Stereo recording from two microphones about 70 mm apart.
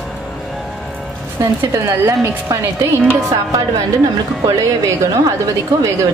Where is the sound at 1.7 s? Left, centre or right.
Right.